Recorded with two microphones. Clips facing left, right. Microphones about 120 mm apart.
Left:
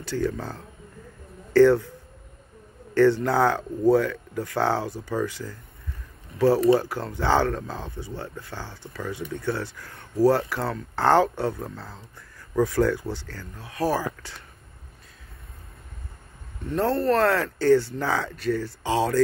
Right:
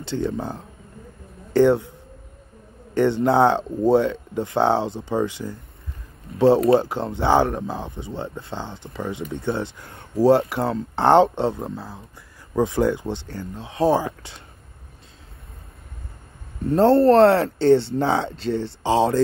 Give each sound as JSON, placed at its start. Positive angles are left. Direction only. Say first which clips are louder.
{"t": 0.0, "sound": "a man's voice", "louder": "right 2 dB", "side_deg": -25}
{"t": 16.6, "sound": "speech", "louder": "right 8 dB", "side_deg": -30}